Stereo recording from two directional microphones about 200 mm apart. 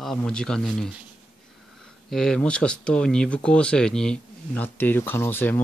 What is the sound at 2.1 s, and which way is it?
Speech, 5° left (ahead or behind).